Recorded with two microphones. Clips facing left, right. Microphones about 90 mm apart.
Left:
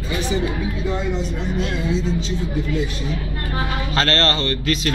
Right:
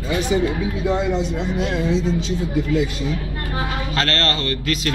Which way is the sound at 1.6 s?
55° right (ahead or behind).